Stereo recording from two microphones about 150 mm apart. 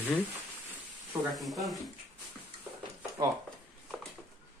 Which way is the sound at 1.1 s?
Centre (ahead or behind).